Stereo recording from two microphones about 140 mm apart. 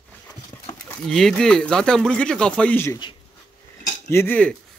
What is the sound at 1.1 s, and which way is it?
Speech, centre (ahead or behind).